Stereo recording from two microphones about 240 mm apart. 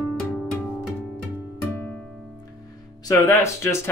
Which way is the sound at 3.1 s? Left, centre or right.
Centre.